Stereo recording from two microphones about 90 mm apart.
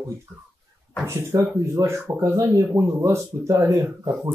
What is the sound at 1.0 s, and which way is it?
Speech, 30° right (ahead or behind).